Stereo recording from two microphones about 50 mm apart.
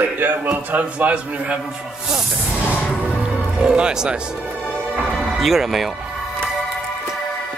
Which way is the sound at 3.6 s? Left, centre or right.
Centre.